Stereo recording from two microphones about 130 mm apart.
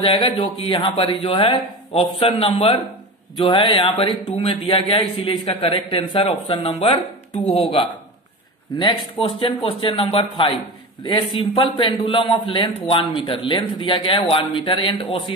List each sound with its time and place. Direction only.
0.0 s a man's voice: 45° left (ahead or behind)
9.2 s a man's voice: 45° left (ahead or behind)